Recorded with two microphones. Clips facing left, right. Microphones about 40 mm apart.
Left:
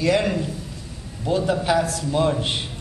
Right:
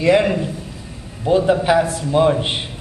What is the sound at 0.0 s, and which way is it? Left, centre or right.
A man's voice, right.